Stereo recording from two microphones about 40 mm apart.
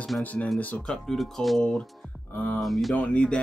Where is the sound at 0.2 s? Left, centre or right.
Left.